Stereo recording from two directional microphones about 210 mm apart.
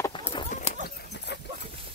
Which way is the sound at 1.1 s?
55° left (ahead or behind).